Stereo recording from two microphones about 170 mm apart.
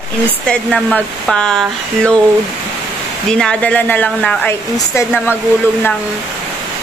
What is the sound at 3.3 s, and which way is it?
Speech, 5° left (ahead or behind).